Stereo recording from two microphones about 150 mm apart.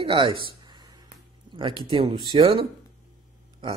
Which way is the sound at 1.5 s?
35° right (ahead or behind).